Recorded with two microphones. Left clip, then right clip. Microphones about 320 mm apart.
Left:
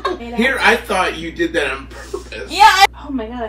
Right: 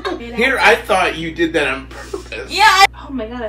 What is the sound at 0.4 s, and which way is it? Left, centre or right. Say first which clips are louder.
Speech: right 2 dB; right.